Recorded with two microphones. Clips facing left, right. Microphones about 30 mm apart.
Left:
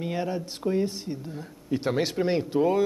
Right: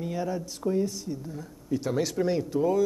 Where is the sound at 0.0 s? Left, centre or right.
Left.